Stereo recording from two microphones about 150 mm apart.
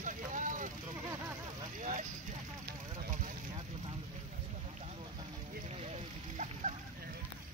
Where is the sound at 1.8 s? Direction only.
55° right (ahead or behind).